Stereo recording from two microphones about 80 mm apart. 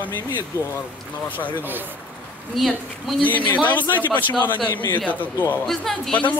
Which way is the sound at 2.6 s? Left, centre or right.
Centre.